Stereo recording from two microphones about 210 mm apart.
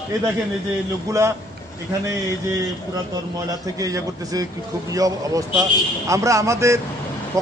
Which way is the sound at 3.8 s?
15° right (ahead or behind).